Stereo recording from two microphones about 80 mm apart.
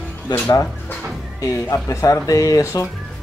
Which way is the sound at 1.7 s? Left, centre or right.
Left.